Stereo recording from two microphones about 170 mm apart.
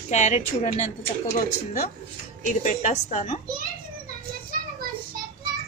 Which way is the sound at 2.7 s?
45° left (ahead or behind).